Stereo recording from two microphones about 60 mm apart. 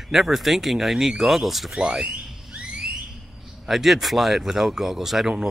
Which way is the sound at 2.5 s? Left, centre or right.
Centre.